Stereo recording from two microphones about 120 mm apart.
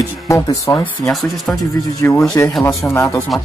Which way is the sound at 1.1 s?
Centre (ahead or behind).